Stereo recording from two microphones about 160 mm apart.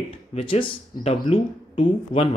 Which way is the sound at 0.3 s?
35° left (ahead or behind).